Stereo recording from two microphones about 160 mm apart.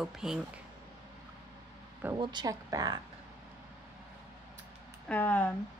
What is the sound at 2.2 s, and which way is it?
Speech, 25° right (ahead or behind).